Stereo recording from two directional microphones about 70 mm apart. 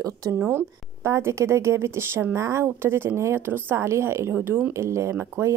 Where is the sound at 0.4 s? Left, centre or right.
Right.